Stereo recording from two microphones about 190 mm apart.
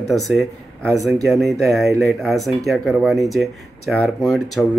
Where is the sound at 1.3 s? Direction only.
Centre (ahead or behind).